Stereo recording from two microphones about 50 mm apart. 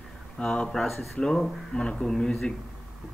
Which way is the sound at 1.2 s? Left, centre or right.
Centre.